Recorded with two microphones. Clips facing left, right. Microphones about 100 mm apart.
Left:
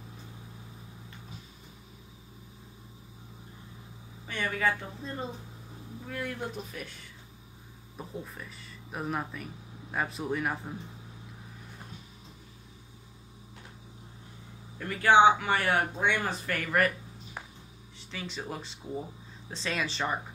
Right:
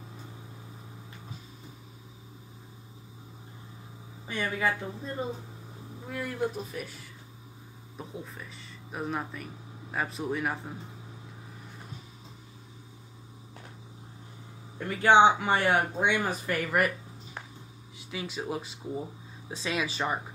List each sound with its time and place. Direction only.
4.3 s speech: 15° right (ahead or behind)
8.0 s speech: centre (ahead or behind)
14.8 s speech: 20° right (ahead or behind)
17.9 s speech: 10° right (ahead or behind)